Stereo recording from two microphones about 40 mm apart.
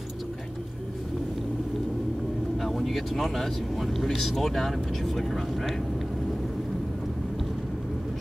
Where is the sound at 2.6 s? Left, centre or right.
Centre.